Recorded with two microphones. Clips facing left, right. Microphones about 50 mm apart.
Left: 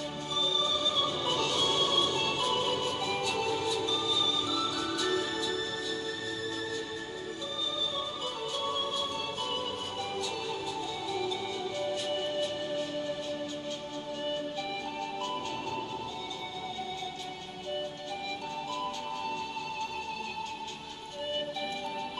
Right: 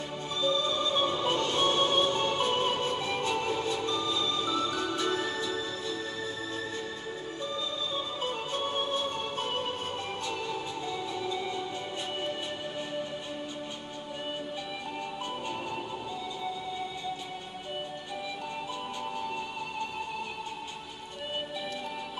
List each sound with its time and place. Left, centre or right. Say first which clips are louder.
0.4 s music: right 3 dB; right
8.5 s music: right 2 dB; right
12.2 s music: left 2 dB; right